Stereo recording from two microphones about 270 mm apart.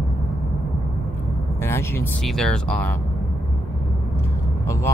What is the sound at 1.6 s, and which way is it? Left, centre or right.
Speech, centre.